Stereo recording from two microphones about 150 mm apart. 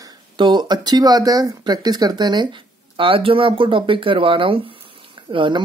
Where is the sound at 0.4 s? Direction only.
30° right (ahead or behind).